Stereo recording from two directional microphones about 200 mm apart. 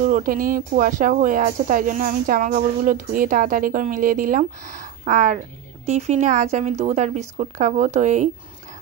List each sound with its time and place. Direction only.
0.0 s a woman's voice: 45° right (ahead or behind)